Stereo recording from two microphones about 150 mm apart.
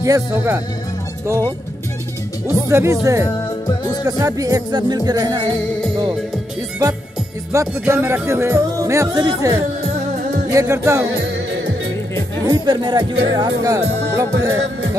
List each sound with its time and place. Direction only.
0.0 s speech: 20° right (ahead or behind)
2.7 s speech: 20° right (ahead or behind)
7.5 s speech: 15° right (ahead or behind)
12.4 s speech: 30° right (ahead or behind)